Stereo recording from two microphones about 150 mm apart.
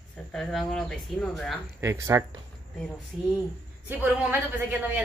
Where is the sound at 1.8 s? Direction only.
20° right (ahead or behind).